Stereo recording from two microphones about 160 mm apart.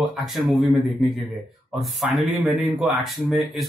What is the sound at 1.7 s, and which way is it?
Speech, centre (ahead or behind).